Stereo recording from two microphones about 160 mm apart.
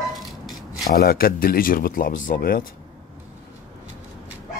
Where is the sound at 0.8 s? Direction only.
70° left (ahead or behind).